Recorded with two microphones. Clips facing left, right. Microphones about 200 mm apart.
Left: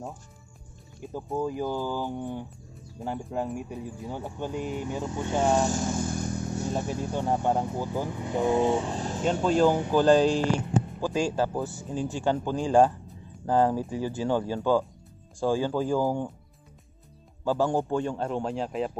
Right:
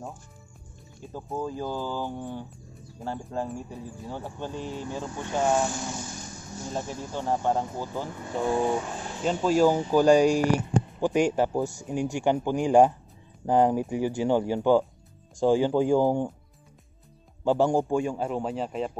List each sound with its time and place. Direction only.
1.1 s speech: 15° left (ahead or behind)
5.6 s vehicle: 45° left (ahead or behind); by 7.2 s 65° left (ahead or behind)
7.2 s speech: 15° left (ahead or behind); by 9.2 s 35° left (ahead or behind)
9.2 s speech: 5° right (ahead or behind)
17.5 s speech: 15° right (ahead or behind); by 18.9 s centre (ahead or behind)